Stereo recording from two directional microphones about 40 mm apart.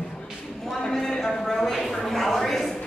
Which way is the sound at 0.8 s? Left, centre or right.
Centre.